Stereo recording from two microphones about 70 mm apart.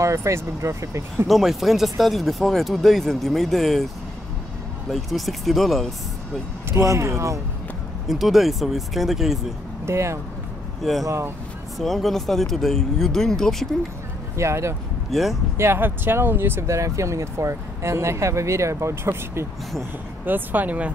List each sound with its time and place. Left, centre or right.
0.0 s speech: right
1.2 s speech: centre
6.7 s speech: right
8.1 s speech: centre
9.8 s speech: right
10.8 s speech: centre
14.3 s speech: right
15.0 s speech: centre
15.5 s speech: right
20.2 s speech: right